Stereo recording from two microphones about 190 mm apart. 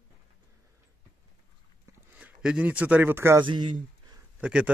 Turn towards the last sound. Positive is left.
turn(degrees=-5)  # may be behind; listen again after turning